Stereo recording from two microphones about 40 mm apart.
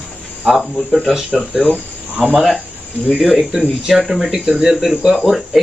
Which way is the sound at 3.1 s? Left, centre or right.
Centre.